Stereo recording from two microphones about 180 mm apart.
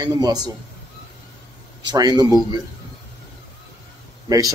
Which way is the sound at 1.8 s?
25° right (ahead or behind).